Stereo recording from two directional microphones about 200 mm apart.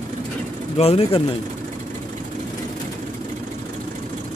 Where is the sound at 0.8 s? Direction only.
30° left (ahead or behind).